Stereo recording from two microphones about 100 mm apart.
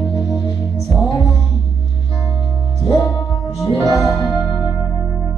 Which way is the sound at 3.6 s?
Centre (ahead or behind).